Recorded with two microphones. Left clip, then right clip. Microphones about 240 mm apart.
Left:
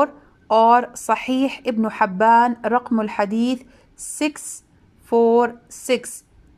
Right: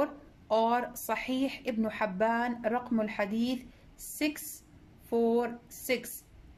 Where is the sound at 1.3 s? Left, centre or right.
Left.